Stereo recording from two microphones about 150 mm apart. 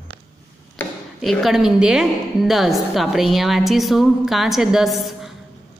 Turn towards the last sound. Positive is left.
turn(degrees=0)  # may be behind; listen again after turning